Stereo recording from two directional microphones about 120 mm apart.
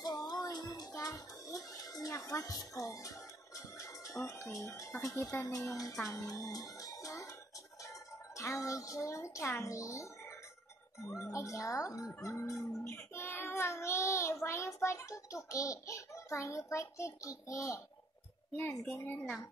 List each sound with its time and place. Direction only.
0.0 s music: 35° left (ahead or behind)
6.0 s speech: 30° left (ahead or behind)
8.4 s a child's voice: 25° left (ahead or behind)
11.1 s speech: 25° left (ahead or behind)
18.6 s a woman's voice: 10° left (ahead or behind)